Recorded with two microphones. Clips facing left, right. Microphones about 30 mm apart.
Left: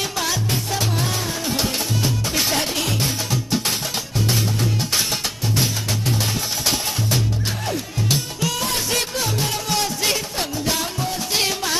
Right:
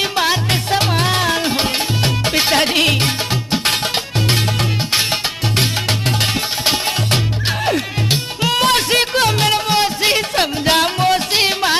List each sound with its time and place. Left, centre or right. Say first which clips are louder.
0.0 s music: right 7 dB; right
0.5 s music: right 7 dB; right
2.3 s music: right 9 dB; right
5.6 s music: right 5 dB; right
8.1 s music: right 5 dB; right
8.6 s music: right 9 dB; right
9.7 s music: right 6 dB; right
10.3 s music: right 9 dB; right
11.3 s music: right 6 dB; right